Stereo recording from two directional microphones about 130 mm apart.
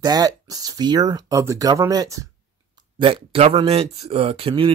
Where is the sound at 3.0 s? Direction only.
45° right (ahead or behind).